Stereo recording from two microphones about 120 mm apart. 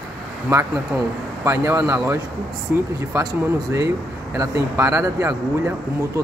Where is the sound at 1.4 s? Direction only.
25° right (ahead or behind).